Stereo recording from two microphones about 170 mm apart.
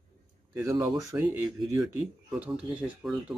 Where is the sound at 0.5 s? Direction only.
20° right (ahead or behind).